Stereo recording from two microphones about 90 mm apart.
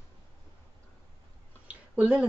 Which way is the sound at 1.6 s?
15° right (ahead or behind).